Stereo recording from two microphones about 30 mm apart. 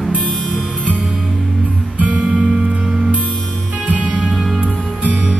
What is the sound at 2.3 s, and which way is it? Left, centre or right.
Music, centre.